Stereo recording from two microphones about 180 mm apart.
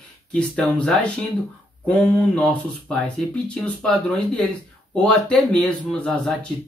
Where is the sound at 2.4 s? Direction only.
5° left (ahead or behind).